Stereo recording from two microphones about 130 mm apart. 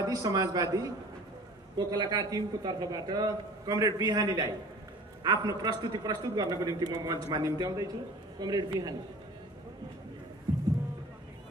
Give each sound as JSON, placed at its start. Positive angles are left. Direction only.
{"t": 0.0, "sound": "a man's voice", "side_deg": -30}